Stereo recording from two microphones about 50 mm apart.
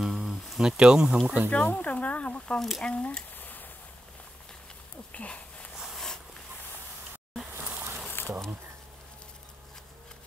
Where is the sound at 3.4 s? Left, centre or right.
Left.